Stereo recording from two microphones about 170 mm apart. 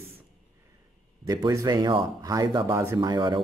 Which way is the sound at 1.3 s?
20° right (ahead or behind).